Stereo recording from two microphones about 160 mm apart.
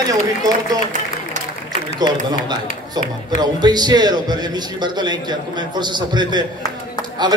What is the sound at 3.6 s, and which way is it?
Speech, 25° right (ahead or behind).